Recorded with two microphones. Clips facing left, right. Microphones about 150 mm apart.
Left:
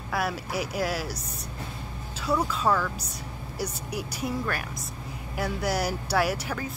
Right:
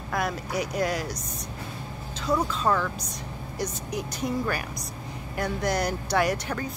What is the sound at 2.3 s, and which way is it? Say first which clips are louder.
Speech: even; 10° left (ahead or behind).